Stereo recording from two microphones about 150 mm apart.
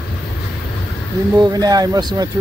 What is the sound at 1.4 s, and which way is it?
Speech, 25° right (ahead or behind).